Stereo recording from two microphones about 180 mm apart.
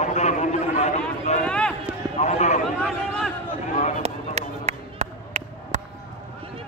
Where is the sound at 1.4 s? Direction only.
5° left (ahead or behind).